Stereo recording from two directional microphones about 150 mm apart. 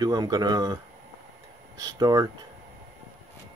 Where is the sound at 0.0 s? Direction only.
25° right (ahead or behind).